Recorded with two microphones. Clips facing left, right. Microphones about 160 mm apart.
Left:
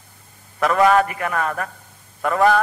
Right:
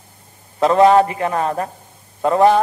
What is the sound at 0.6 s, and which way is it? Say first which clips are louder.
A man's voice: right 4 dB; 25° right (ahead or behind).